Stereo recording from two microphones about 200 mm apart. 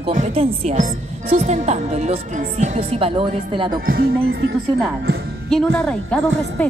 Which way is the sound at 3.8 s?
50° right (ahead or behind).